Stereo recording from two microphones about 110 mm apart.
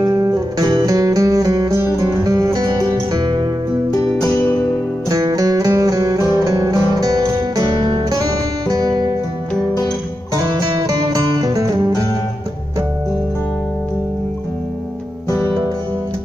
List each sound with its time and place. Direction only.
0.0 s music: 35° right (ahead or behind)
4.3 s music: 15° left (ahead or behind)
5.1 s music: 35° right (ahead or behind)
6.4 s guitar: 30° right (ahead or behind)
11.0 s music: 35° right (ahead or behind)